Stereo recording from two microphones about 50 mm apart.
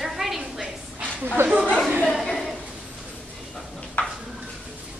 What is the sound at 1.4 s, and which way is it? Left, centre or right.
Chatter, right.